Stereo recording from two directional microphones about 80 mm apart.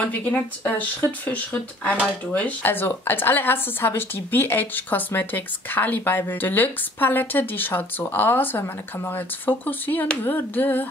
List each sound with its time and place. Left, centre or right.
0.0 s a woman's voice: centre